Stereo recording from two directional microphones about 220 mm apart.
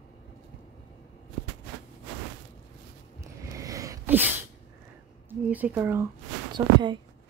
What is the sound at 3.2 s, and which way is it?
Sneeze, 15° right (ahead or behind).